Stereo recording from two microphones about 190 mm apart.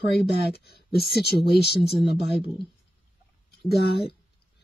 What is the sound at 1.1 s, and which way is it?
Speech, 55° left (ahead or behind).